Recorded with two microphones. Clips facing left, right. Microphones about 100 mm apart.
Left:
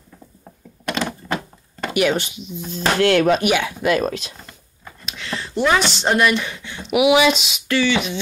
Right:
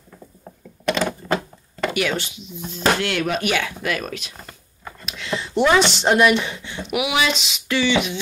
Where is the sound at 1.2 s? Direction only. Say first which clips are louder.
Right 5 dB; 55° right (ahead or behind).